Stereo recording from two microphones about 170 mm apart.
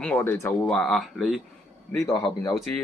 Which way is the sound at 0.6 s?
5° left (ahead or behind).